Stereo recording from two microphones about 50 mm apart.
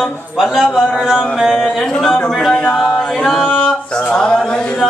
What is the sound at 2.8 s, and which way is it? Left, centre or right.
Speech, centre.